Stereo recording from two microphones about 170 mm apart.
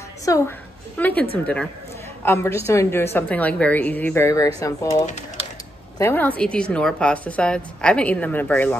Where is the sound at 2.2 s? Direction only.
15° left (ahead or behind).